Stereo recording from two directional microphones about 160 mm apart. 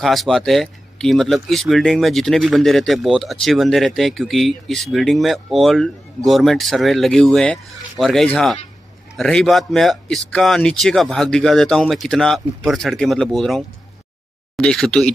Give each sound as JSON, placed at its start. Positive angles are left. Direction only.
{"t": 0.0, "sound": "speech", "side_deg": 0}